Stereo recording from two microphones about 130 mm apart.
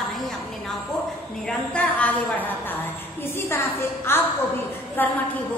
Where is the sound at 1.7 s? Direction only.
10° left (ahead or behind).